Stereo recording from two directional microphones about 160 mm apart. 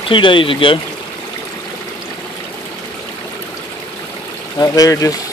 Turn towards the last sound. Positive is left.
turn(degrees=20)  # may be behind; listen again after turning